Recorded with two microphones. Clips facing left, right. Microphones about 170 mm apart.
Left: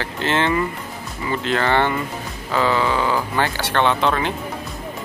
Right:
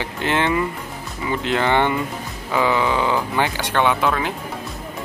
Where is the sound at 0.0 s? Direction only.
15° right (ahead or behind).